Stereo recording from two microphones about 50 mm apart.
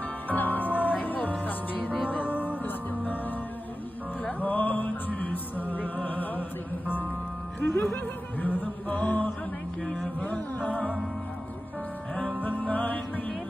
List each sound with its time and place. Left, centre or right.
0.3 s music: left
4.2 s music: left
7.7 s music: left
12.4 s music: left